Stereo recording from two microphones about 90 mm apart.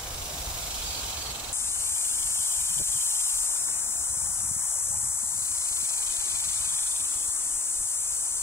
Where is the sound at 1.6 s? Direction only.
30° left (ahead or behind).